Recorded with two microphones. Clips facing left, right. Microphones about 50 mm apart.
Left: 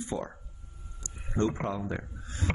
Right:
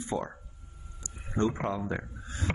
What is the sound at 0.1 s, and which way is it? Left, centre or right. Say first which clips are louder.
Speech: right 2 dB; right.